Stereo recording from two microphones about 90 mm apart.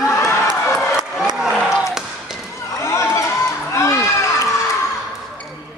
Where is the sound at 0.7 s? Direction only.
5° right (ahead or behind).